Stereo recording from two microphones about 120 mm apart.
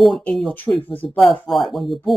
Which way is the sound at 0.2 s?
10° left (ahead or behind).